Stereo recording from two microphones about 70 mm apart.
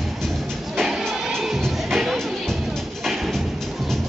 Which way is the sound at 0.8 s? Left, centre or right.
Centre.